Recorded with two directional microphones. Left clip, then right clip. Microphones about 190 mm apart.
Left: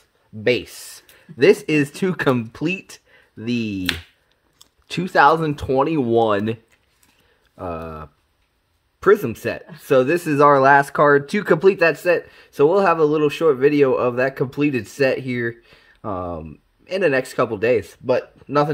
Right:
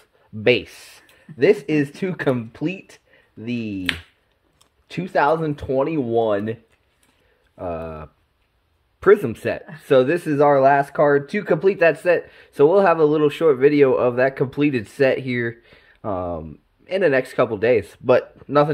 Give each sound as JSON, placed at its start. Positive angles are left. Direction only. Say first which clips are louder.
{"t": 0.9, "sound": "speech", "louder": "left 3 dB", "side_deg": 25}
{"t": 7.5, "sound": "speech", "louder": "right 1 dB", "side_deg": 15}
{"t": 10.3, "sound": "speech", "louder": "left 2 dB", "side_deg": 30}
{"t": 17.7, "sound": "speech", "louder": "right 3 dB", "side_deg": -10}